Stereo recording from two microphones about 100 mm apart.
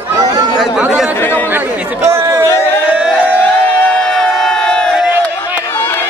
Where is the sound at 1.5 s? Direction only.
25° right (ahead or behind).